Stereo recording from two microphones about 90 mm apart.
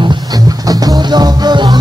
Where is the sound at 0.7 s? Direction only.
45° right (ahead or behind).